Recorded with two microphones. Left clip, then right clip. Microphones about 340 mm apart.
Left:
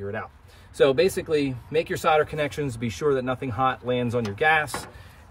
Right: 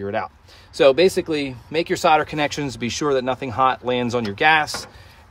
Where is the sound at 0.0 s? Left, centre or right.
Right.